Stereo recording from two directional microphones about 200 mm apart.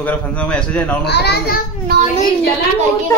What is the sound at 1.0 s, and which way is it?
Speech, 55° left (ahead or behind).